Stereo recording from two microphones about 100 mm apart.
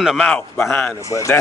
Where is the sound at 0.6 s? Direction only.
20° left (ahead or behind).